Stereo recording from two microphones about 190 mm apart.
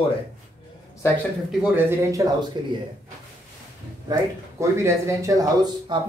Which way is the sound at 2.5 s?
25° right (ahead or behind).